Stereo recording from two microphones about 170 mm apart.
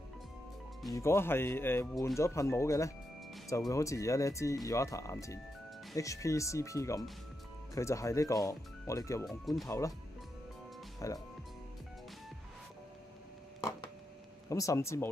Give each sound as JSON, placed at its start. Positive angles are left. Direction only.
{"t": 0.9, "sound": "speech", "side_deg": 15}
{"t": 9.2, "sound": "speech", "side_deg": 0}
{"t": 9.7, "sound": "speech", "side_deg": 15}
{"t": 11.0, "sound": "speech", "side_deg": 20}
{"t": 14.5, "sound": "speech", "side_deg": 20}